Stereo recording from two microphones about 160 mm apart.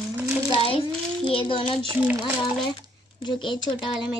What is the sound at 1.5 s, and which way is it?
Speech, 35° left (ahead or behind).